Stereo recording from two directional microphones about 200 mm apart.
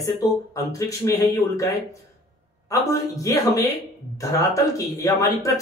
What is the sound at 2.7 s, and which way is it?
Speech, 15° left (ahead or behind).